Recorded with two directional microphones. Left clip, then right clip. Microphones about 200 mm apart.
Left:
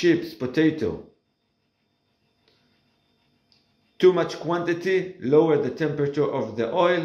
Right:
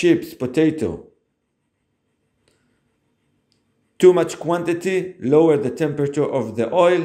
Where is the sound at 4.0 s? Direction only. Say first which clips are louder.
Right 5 dB; 35° right (ahead or behind).